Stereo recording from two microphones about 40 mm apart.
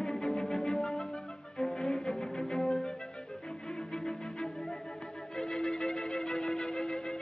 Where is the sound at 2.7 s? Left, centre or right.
Left.